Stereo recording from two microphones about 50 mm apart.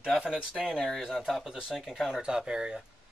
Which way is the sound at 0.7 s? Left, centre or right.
Centre.